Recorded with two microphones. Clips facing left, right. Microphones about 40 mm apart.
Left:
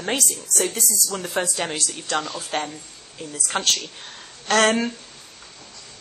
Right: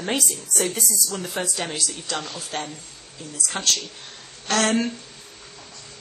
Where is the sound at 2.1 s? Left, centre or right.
Left.